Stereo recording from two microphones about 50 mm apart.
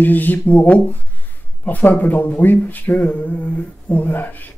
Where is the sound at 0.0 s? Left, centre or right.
Left.